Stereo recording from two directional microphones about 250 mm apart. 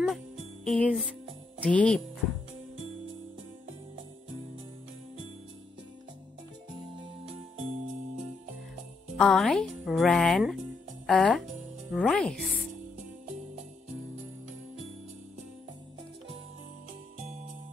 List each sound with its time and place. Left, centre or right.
0.7 s speech: centre
7.5 s music: right
9.2 s speech: centre